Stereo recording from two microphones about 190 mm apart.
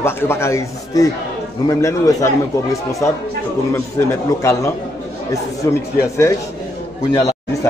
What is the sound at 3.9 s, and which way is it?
A man's voice, 15° left (ahead or behind).